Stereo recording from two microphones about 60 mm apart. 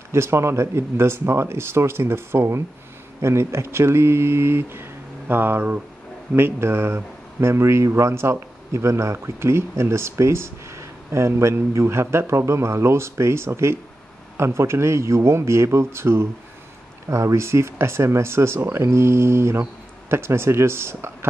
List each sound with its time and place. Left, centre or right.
0.1 s speech: right
17.1 s speech: right